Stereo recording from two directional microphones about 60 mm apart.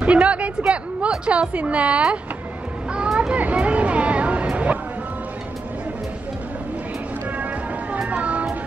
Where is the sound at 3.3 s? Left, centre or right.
Right.